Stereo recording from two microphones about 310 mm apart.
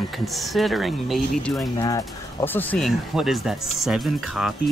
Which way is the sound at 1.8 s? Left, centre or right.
Centre.